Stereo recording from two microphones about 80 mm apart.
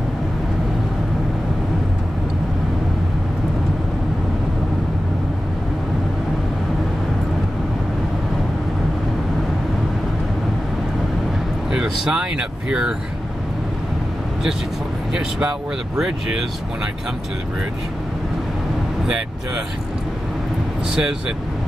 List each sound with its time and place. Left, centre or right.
11.7 s speech: centre
15.1 s speech: centre